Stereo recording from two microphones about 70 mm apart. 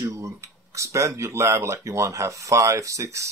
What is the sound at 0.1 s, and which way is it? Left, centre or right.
Speech, right.